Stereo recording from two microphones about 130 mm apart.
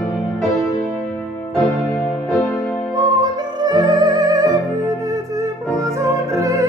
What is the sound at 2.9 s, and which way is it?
Music, 30° right (ahead or behind).